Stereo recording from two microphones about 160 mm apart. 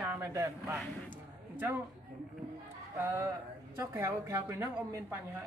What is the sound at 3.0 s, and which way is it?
Speech, 15° right (ahead or behind).